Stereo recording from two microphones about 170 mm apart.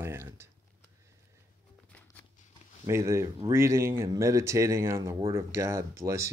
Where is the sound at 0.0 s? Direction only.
15° right (ahead or behind).